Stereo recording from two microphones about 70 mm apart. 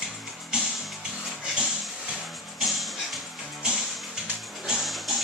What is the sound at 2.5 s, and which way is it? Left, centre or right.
Music, centre.